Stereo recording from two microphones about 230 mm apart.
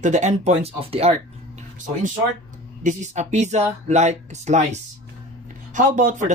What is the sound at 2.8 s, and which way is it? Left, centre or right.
A man's voice, right.